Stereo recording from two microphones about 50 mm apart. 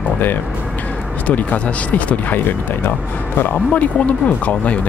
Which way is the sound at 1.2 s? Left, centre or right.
Left.